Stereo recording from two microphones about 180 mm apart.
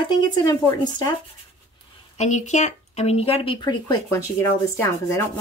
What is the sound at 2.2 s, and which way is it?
Speech, 40° left (ahead or behind).